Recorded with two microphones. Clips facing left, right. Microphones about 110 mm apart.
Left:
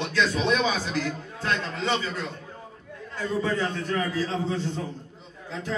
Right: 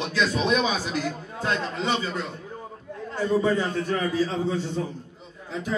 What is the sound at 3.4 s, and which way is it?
A man's voice, 15° right (ahead or behind).